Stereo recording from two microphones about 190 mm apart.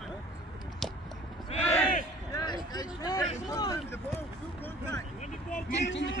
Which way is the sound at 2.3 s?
20° left (ahead or behind).